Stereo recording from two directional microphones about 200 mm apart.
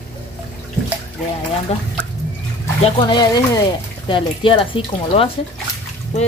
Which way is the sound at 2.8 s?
20° left (ahead or behind).